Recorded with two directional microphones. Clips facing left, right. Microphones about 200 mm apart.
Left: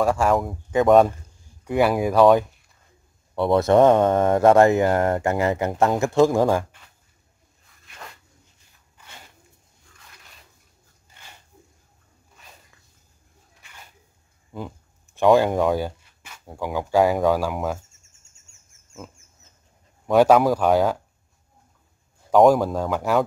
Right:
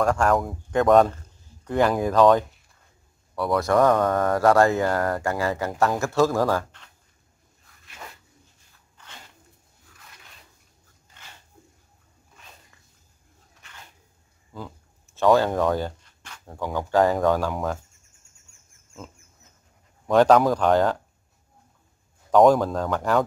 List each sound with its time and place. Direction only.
0.0 s speech: 5° left (ahead or behind)
3.3 s mantra: 25° left (ahead or behind)
8.9 s a sound: 10° left (ahead or behind)
14.5 s speech: 25° left (ahead or behind); by 17.7 s 5° left (ahead or behind)
19.0 s speech: 5° left (ahead or behind)
22.3 s speech: 5° left (ahead or behind)